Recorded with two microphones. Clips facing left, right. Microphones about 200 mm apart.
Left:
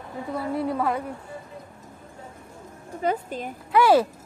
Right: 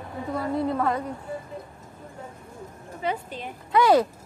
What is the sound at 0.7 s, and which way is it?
Speech, 10° left (ahead or behind).